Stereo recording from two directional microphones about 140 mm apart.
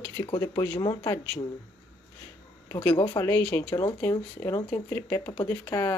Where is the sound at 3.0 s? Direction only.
20° left (ahead or behind).